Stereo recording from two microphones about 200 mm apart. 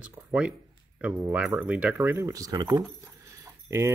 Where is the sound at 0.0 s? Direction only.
5° right (ahead or behind).